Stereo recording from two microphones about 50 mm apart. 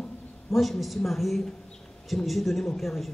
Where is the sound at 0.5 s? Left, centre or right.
Centre.